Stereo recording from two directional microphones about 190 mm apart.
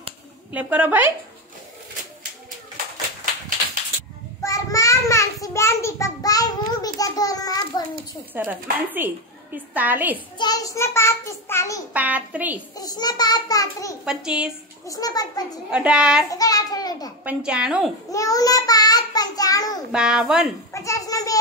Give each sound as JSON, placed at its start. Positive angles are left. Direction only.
{"t": 0.5, "sound": "a woman's voice", "side_deg": -10}
{"t": 4.4, "sound": "child singing", "side_deg": 15}
{"t": 8.4, "sound": "a woman's voice", "side_deg": -10}
{"t": 10.3, "sound": "a child's voice", "side_deg": 20}
{"t": 11.9, "sound": "a woman's voice", "side_deg": -10}
{"t": 12.7, "sound": "a child's voice", "side_deg": 20}
{"t": 14.0, "sound": "a woman's voice", "side_deg": -5}
{"t": 14.9, "sound": "a child's voice", "side_deg": 20}
{"t": 15.7, "sound": "a woman's voice", "side_deg": -5}
{"t": 16.3, "sound": "a sound", "side_deg": 20}
{"t": 17.2, "sound": "a woman's voice", "side_deg": -5}
{"t": 18.1, "sound": "child singing", "side_deg": 20}
{"t": 19.9, "sound": "a woman's voice", "side_deg": -5}
{"t": 20.7, "sound": "a sound", "side_deg": 15}